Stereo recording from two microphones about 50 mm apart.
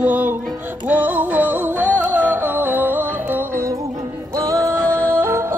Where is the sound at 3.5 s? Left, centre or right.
Right.